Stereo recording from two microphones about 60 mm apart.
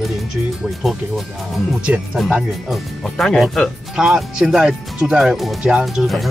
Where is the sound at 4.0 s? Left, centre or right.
Centre.